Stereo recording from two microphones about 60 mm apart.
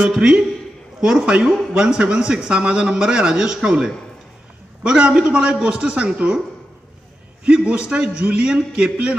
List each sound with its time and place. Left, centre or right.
0.0 s speech: centre
7.4 s a man's voice: centre